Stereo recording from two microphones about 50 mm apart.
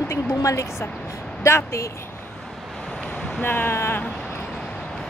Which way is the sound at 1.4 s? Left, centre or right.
Left.